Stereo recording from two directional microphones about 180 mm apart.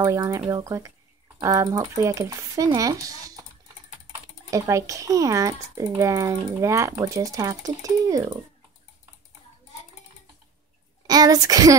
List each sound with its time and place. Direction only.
0.0 s speech: 15° right (ahead or behind)
4.5 s speech: 15° right (ahead or behind)
11.1 s speech: 20° right (ahead or behind)